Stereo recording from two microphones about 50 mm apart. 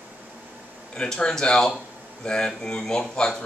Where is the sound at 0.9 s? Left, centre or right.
Centre.